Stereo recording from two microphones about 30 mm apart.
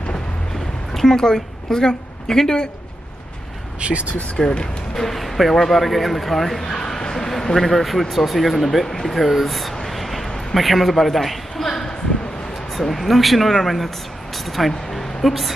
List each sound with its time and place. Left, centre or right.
1.1 s a woman's voice: left
3.8 s speech: right
4.4 s speech: left
4.9 s speech: centre
6.7 s a man's voice: left; by 8.8 s centre
8.8 s speech: centre
9.8 s vehicle: centre
10.5 s a man's voice: centre
12.9 s a woman's voice: centre